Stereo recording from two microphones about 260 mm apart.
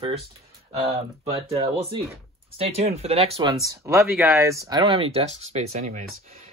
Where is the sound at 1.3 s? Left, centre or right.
Right.